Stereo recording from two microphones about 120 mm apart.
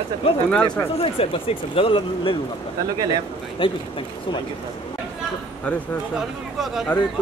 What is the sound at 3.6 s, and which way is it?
Speech, 45° left (ahead or behind).